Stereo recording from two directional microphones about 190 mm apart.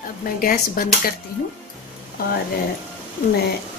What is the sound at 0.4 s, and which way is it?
Speech, 50° left (ahead or behind).